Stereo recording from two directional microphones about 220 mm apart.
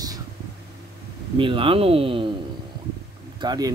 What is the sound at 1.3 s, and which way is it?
Speech, 25° right (ahead or behind).